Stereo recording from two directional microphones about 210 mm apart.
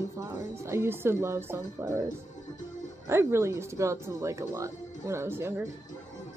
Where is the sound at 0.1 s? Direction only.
15° right (ahead or behind).